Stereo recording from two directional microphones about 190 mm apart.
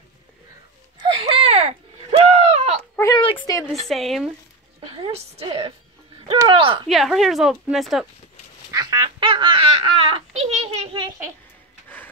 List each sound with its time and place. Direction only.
0.9 s a sound: 30° right (ahead or behind)
3.2 s a sound: 25° left (ahead or behind)
3.7 s speech: centre (ahead or behind)
4.9 s a woman's voice: 30° right (ahead or behind)
6.9 s speech: centre (ahead or behind)
8.7 s baby laughter: 20° right (ahead or behind)